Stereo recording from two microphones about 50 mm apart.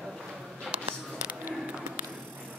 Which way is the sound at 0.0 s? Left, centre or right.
Centre.